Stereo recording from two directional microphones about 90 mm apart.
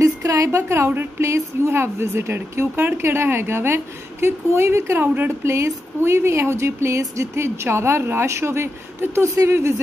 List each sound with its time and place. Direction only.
0.0 s a woman's voice: 35° right (ahead or behind)